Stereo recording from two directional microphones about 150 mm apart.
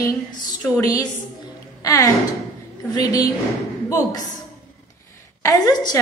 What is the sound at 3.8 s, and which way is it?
Speech, 25° left (ahead or behind).